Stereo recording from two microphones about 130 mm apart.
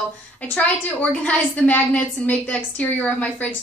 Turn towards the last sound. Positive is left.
turn(degrees=10)  # may be behind; listen again after turning